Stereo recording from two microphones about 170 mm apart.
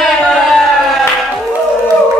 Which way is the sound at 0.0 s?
Centre (ahead or behind).